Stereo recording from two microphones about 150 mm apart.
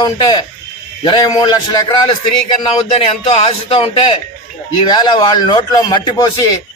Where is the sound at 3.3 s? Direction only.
40° left (ahead or behind).